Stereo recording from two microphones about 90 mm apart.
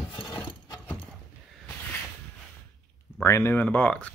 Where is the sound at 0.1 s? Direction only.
75° left (ahead or behind).